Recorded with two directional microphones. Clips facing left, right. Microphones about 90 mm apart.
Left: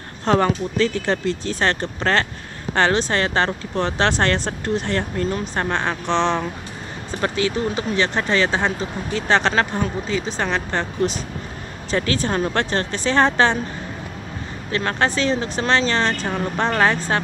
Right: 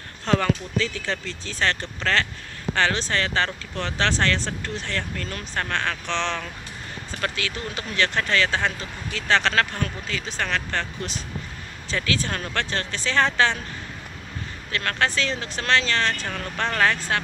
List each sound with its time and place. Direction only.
0.2 s speech: 40° left (ahead or behind)
6.0 s speech: 35° left (ahead or behind)
7.2 s speech: 25° left (ahead or behind)
10.2 s speech: 35° left (ahead or behind)
11.9 s speech: 50° left (ahead or behind)
12.3 s speech: 30° left (ahead or behind)
14.7 s speech: 25° left (ahead or behind)